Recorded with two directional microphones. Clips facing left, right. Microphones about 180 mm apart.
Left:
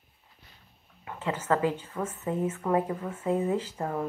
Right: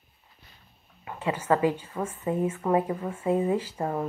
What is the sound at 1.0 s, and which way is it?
A woman's voice, 10° right (ahead or behind).